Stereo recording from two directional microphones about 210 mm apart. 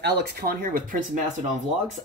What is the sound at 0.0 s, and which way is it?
Speech, 50° right (ahead or behind).